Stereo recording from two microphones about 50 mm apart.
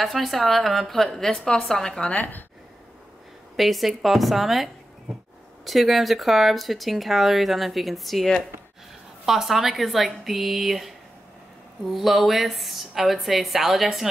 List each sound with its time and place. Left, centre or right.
0.0 s speech: centre
2.1 s speech: left
3.5 s speech: centre
5.7 s speech: centre